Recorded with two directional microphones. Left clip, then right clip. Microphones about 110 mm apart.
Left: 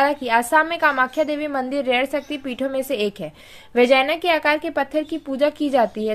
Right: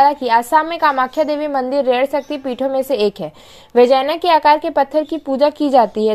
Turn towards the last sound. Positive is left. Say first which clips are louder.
# right 6 dB
turn(degrees=-40)  # may be behind; listen again after turning